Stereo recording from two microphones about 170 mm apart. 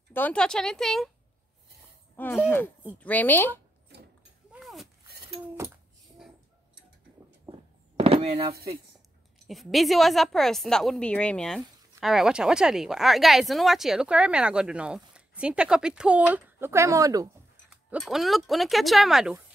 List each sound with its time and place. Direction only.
0.1 s speech: 10° left (ahead or behind)
2.4 s a woman's voice: 15° left (ahead or behind)
4.5 s a sound: centre (ahead or behind)
8.0 s a sound: 35° right (ahead or behind)
9.5 s speech: centre (ahead or behind); by 17.3 s 20° right (ahead or behind)
17.8 s speech: centre (ahead or behind)